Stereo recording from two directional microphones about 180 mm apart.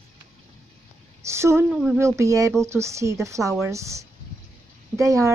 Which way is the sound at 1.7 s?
Centre (ahead or behind).